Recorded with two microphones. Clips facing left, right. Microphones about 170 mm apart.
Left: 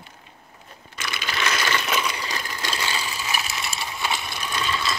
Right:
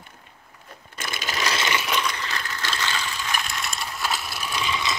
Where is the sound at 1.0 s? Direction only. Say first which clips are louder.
Even; 45° right (ahead or behind).